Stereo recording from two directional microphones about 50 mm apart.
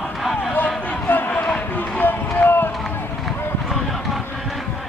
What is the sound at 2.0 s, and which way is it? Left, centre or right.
Run, left.